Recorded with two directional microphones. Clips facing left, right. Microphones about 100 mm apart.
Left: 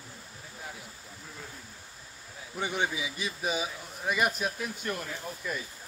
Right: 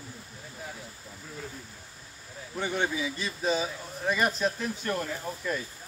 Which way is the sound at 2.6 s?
15° left (ahead or behind).